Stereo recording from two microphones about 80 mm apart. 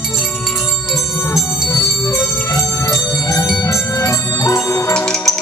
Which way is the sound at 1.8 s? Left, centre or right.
Left.